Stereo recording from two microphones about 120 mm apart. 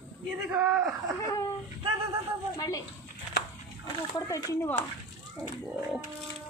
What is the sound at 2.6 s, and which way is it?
Speech, 30° left (ahead or behind).